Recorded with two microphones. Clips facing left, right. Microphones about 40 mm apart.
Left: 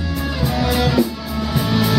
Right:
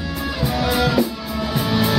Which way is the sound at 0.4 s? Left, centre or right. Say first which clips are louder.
Even; centre.